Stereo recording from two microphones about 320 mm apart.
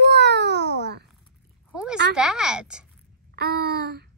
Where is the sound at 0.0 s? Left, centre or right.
Right.